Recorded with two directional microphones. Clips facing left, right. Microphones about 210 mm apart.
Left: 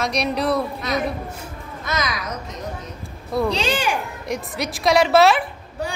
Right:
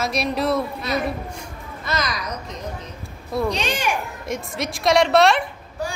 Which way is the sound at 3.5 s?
30° left (ahead or behind).